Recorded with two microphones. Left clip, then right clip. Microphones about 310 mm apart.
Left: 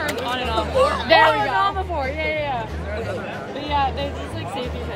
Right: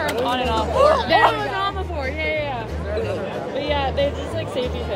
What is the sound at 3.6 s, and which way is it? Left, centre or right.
Speech, centre.